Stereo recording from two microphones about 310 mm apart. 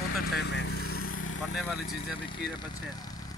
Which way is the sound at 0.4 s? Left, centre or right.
Left.